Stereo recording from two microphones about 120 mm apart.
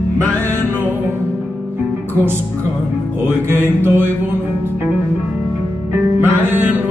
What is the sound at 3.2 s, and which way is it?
Mantra, 15° right (ahead or behind).